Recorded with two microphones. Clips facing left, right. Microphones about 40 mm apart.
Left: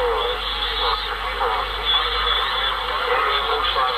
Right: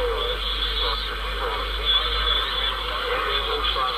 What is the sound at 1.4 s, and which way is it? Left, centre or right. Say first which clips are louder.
Radio: left 3 dB; centre.